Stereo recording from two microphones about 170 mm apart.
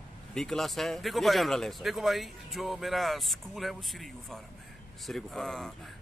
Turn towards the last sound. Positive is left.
turn(degrees=5)  # may be behind; listen again after turning